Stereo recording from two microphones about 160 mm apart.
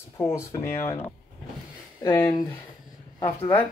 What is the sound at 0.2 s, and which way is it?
Speech, 15° left (ahead or behind).